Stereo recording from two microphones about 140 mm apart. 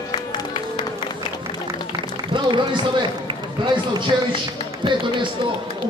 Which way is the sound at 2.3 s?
35° right (ahead or behind).